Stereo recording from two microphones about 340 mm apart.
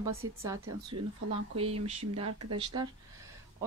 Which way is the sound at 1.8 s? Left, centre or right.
Centre.